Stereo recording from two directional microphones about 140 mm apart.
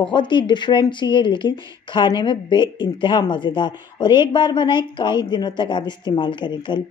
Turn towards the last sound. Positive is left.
turn(degrees=35)  # may be behind; listen again after turning